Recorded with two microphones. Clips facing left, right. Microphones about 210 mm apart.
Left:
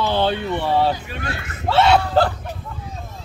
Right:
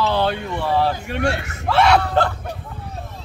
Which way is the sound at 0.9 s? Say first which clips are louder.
Right 7 dB; 65° right (ahead or behind).